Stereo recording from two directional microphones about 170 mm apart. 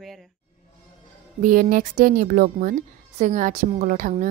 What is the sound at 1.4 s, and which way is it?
A woman's voice, 55° right (ahead or behind).